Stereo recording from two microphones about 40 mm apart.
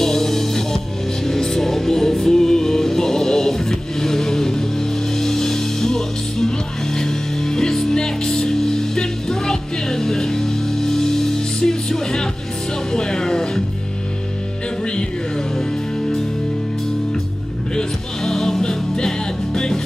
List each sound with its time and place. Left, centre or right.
0.0 s music: centre
14.9 s music: left
17.7 s music: centre